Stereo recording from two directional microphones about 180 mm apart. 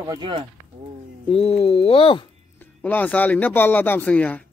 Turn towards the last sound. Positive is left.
turn(degrees=5)  # may be behind; listen again after turning